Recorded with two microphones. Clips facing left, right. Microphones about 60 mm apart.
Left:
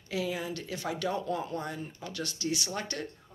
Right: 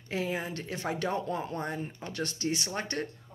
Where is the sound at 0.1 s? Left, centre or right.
Right.